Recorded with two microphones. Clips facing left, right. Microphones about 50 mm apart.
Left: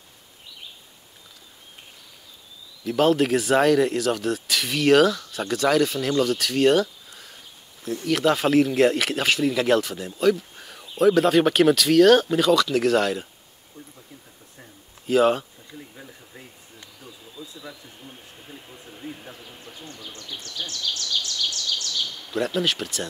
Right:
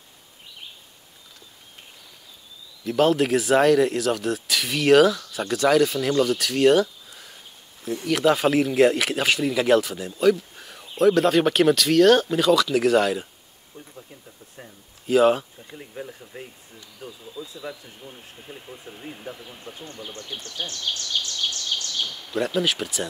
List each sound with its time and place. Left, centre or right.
2.8 s speech: centre
15.0 s speech: centre
17.6 s speech: centre
19.6 s speech: right
22.3 s speech: centre